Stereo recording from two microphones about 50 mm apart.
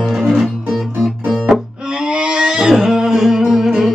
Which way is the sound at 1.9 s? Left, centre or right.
Centre.